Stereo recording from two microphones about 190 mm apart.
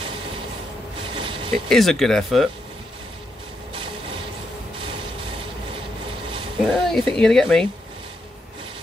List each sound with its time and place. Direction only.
1.1 s a sound: 25° right (ahead or behind)
1.7 s speech: centre (ahead or behind)
6.6 s speech: centre (ahead or behind)